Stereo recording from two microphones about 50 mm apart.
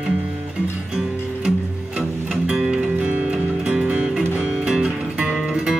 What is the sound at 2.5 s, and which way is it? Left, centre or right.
Music, centre.